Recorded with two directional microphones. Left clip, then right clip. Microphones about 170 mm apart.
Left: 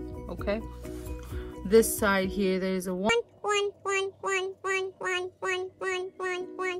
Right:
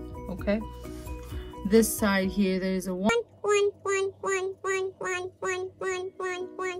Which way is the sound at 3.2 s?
20° left (ahead or behind).